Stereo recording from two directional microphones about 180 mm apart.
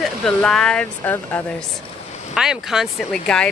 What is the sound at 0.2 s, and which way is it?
Speech, 5° left (ahead or behind).